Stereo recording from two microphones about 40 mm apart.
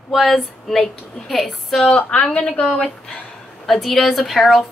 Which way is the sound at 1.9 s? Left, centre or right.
Left.